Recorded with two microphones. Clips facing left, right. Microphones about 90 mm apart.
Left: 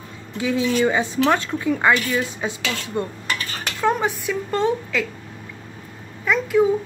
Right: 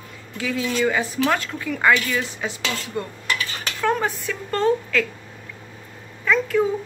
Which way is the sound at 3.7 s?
15° left (ahead or behind).